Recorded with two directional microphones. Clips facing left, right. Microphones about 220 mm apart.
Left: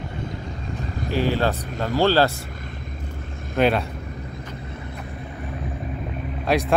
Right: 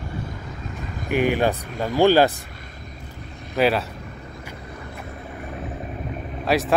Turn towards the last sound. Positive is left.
turn(degrees=0)  # may be behind; listen again after turning